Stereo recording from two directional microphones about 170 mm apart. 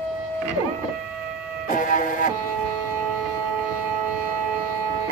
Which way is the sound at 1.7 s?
50° left (ahead or behind).